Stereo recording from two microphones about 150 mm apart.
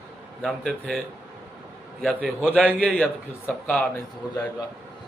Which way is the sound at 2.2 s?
10° right (ahead or behind).